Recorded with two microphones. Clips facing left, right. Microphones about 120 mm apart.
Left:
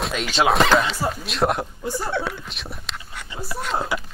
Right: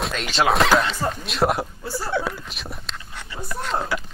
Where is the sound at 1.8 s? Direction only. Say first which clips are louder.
Left 6 dB; 15° left (ahead or behind).